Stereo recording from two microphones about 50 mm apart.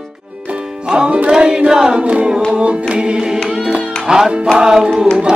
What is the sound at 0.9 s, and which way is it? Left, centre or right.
Music, right.